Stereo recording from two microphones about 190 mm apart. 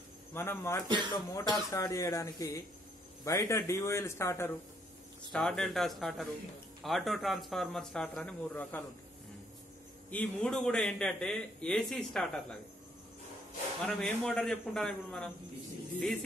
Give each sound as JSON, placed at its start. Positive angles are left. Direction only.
{"t": 0.3, "sound": "speech", "side_deg": 10}
{"t": 0.8, "sound": "speech", "side_deg": -25}
{"t": 1.1, "sound": "speech", "side_deg": 20}
{"t": 5.3, "sound": "a man's voice", "side_deg": 0}
{"t": 10.1, "sound": "a man's voice", "side_deg": 5}
{"t": 13.7, "sound": "a man's voice", "side_deg": 5}